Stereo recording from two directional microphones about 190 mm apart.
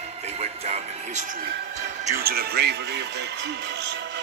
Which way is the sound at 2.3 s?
55° right (ahead or behind).